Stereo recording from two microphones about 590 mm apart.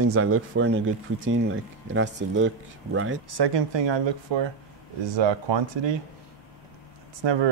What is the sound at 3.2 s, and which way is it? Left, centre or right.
Speech, right.